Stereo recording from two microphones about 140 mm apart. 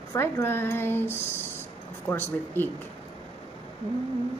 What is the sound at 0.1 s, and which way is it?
Speech, 15° left (ahead or behind).